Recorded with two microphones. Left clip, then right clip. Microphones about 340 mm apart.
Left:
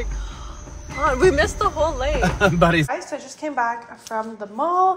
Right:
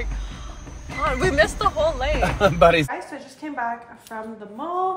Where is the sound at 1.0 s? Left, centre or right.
Centre.